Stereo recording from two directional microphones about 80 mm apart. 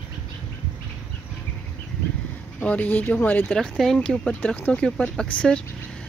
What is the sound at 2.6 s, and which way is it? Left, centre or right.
Speech, centre.